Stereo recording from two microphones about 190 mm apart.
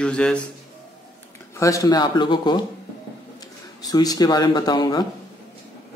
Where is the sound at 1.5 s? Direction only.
15° left (ahead or behind).